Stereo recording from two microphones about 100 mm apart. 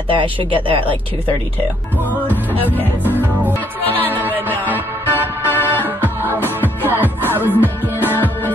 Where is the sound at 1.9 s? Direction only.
20° right (ahead or behind).